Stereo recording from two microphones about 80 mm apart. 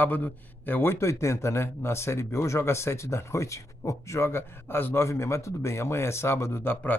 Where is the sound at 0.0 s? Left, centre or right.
Left.